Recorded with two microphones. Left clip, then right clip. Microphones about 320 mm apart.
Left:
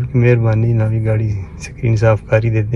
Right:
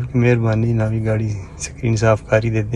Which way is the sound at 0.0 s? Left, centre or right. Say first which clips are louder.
Left 2 dB; centre.